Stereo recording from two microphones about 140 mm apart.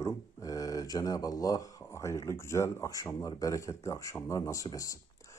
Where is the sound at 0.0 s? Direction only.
25° left (ahead or behind).